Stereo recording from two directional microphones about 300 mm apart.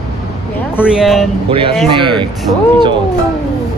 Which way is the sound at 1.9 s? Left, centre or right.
Centre.